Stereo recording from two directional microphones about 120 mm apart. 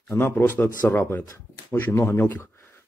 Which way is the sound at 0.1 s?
15° left (ahead or behind).